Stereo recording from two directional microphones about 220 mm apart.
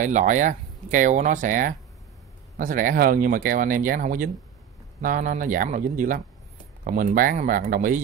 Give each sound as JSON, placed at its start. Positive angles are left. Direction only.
{"t": 0.0, "sound": "speech", "side_deg": -35}